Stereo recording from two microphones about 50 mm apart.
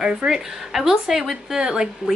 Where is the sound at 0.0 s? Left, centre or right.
Centre.